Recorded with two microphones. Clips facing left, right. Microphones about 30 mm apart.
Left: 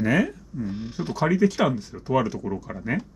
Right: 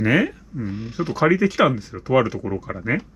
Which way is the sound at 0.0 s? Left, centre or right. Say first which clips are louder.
Right 3 dB; right.